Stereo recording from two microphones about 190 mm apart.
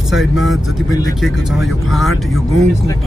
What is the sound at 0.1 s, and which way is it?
A man's voice, centre (ahead or behind).